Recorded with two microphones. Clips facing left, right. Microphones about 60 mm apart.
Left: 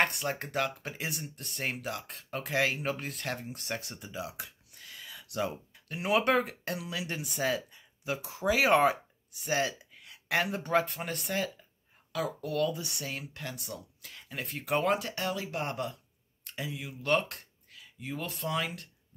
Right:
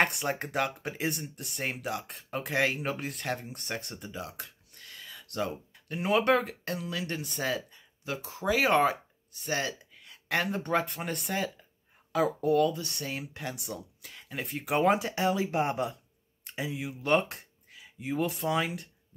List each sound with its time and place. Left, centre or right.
0.0 s speech: centre
12.1 s speech: right
12.7 s speech: centre
13.2 s speech: centre
14.8 s speech: centre